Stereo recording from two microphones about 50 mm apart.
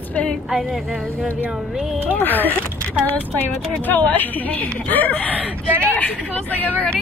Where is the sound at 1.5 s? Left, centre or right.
Centre.